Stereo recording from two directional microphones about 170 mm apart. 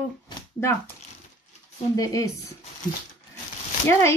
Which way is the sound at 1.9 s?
20° left (ahead or behind).